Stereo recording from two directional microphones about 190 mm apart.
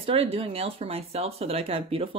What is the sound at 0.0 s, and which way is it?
Speech, 30° right (ahead or behind).